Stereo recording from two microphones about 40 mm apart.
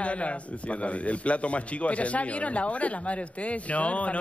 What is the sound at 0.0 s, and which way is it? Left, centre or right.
A man's voice, left.